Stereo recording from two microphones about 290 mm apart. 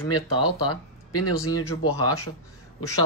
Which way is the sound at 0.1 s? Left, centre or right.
Left.